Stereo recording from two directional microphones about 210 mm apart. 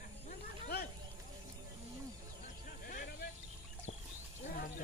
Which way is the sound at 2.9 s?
40° left (ahead or behind).